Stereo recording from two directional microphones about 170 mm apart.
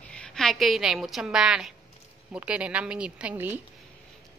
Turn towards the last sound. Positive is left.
turn(degrees=-10)  # may be behind; listen again after turning